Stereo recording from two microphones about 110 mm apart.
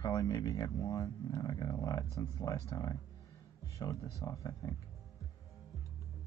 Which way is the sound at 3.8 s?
35° left (ahead or behind).